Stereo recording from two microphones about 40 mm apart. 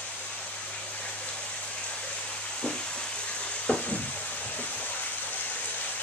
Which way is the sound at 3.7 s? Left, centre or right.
Left.